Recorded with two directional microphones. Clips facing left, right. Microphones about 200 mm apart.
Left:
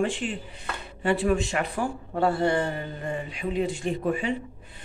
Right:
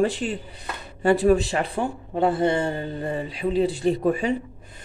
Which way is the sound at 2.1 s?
20° right (ahead or behind).